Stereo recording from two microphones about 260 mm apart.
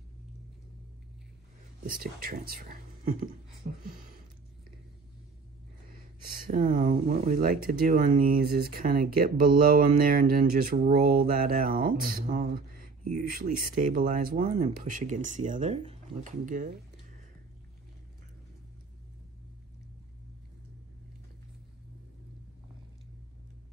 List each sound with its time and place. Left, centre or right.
1.8 s speech: right
6.3 s speech: right